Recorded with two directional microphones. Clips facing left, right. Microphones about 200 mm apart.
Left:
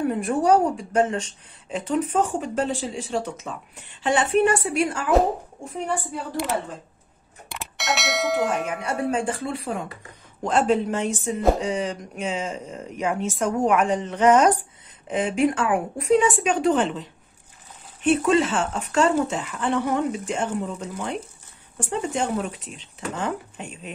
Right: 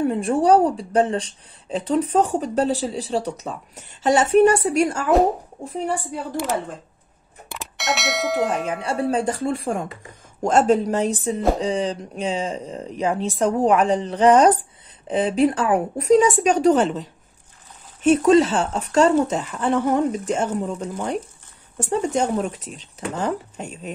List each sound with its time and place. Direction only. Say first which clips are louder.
0.0 s a woman's voice: right 3 dB; 30° right (ahead or behind)
7.4 s bell: right 2 dB; centre (ahead or behind)
8.8 s a woman's voice: right 4 dB; 35° right (ahead or behind)
18.0 s a woman's voice: right 5 dB; 40° right (ahead or behind)